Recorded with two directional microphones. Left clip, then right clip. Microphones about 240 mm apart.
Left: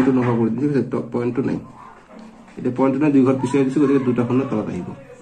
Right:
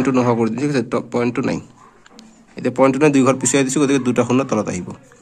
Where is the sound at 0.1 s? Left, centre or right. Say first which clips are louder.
Right 3 dB; right.